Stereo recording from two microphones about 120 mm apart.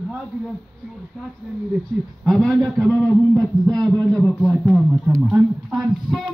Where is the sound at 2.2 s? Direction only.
5° left (ahead or behind).